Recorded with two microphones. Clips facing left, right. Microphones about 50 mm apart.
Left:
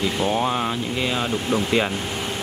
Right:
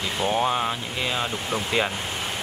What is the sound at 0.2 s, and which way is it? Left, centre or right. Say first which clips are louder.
Speech: right 1 dB; centre.